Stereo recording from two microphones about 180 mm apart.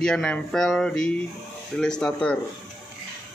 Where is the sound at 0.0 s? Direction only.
5° left (ahead or behind).